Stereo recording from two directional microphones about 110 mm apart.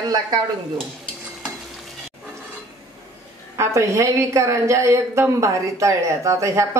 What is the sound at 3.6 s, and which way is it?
A woman's voice, 30° right (ahead or behind).